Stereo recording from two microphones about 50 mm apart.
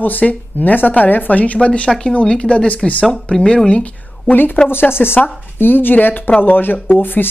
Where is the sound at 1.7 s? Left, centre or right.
Centre; by 4.5 s left.